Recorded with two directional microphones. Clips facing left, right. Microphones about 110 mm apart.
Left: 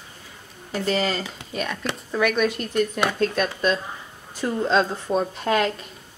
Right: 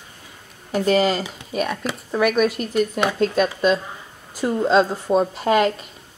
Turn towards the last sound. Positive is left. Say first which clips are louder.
# right 4 dB
turn(degrees=-5)  # may be behind; listen again after turning